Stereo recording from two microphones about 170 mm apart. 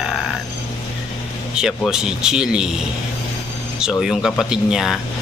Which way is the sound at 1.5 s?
5° right (ahead or behind).